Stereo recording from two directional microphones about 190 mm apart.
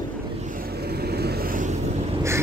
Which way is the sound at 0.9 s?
55° right (ahead or behind).